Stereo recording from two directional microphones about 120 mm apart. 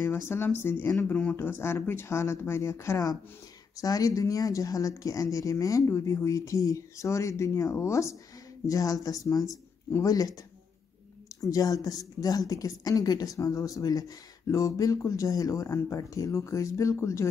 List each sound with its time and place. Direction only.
0.3 s speech: 20° left (ahead or behind)
11.4 s speech: 30° left (ahead or behind)